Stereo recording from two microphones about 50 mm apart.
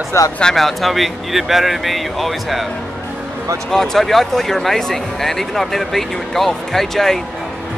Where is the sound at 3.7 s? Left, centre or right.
Centre.